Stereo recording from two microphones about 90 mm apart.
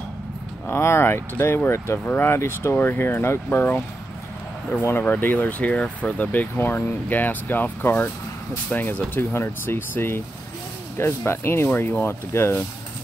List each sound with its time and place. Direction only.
0.7 s speech: 30° left (ahead or behind)
4.8 s speech: 20° left (ahead or behind)